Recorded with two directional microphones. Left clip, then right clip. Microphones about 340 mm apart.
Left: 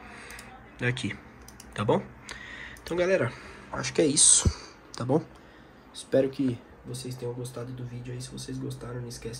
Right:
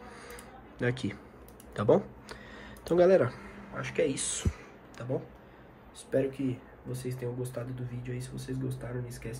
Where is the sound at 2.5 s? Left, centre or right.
Centre.